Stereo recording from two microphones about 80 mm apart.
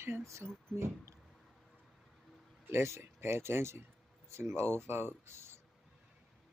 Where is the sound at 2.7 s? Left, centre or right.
Right.